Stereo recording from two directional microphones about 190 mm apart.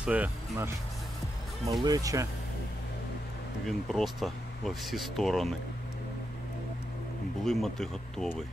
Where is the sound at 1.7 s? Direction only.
20° right (ahead or behind).